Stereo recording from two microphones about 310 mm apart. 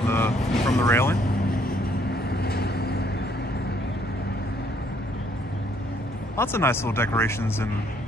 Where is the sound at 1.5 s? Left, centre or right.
Left.